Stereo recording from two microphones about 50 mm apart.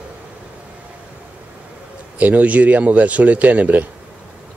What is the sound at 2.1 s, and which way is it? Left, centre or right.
Speech, right.